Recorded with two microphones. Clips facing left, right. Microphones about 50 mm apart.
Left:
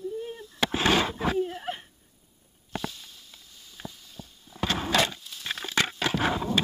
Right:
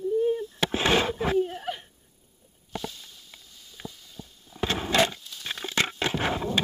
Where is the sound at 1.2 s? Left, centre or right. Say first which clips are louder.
Right 2 dB; centre.